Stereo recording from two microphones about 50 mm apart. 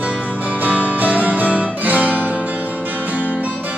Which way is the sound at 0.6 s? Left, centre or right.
Right.